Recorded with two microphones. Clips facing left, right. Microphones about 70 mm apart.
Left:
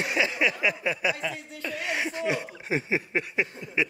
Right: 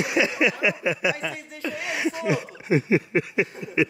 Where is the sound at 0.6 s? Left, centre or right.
Left.